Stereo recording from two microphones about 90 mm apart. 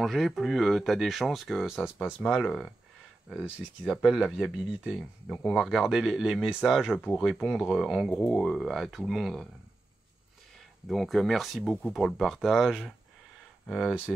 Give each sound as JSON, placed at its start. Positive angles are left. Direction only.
{"t": 0.0, "sound": "speech", "side_deg": 0}
{"t": 3.8, "sound": "speech", "side_deg": 0}
{"t": 10.9, "sound": "speech", "side_deg": 0}